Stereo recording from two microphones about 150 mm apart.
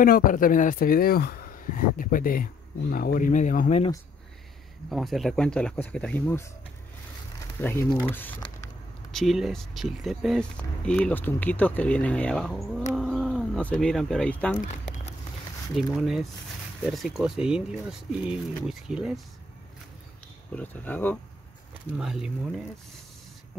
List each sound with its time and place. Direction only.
0.0 s speech: 70° left (ahead or behind)
4.9 s speech: centre (ahead or behind); by 6.5 s 15° left (ahead or behind)
7.6 s speech: 15° left (ahead or behind)
9.1 s speech: centre (ahead or behind)
10.9 s speech: 10° left (ahead or behind)
14.6 s a sound: 55° left (ahead or behind)
15.7 s speech: 5° right (ahead or behind)
20.5 s speech: 10° left (ahead or behind)
21.9 s speech: 5° right (ahead or behind)